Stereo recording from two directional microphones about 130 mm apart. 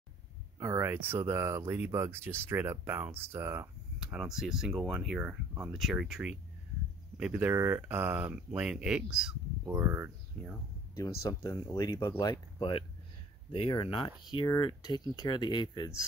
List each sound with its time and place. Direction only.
0.6 s speech: 20° right (ahead or behind)
4.0 s speech: 5° right (ahead or behind)
5.7 s speech: centre (ahead or behind); by 10.1 s 15° right (ahead or behind)
10.4 s speech: 5° left (ahead or behind)
11.0 s speech: 25° left (ahead or behind)